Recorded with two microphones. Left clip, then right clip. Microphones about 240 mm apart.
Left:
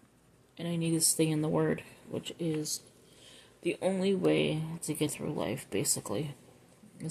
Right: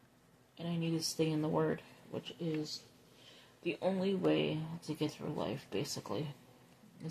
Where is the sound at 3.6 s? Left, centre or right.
Left.